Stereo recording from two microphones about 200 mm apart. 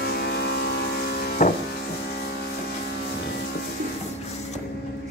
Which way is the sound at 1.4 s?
35° left (ahead or behind).